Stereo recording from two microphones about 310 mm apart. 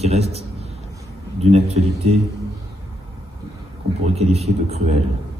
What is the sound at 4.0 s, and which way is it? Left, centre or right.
A man's voice, centre.